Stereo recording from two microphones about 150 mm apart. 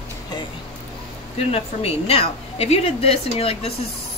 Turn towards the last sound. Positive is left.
turn(degrees=40)  # may be behind; listen again after turning